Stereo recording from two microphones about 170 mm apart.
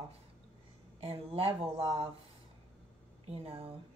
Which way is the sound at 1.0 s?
35° right (ahead or behind).